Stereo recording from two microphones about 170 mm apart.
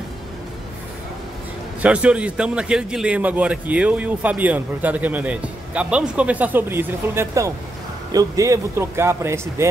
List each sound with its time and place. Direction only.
1.8 s a man's voice: 5° right (ahead or behind)